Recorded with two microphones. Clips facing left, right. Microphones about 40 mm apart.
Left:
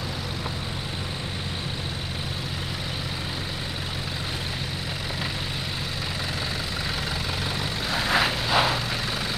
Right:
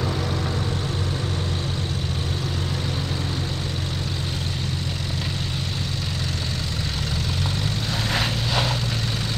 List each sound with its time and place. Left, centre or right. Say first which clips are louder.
7.9 s vehicle: left 3 dB; centre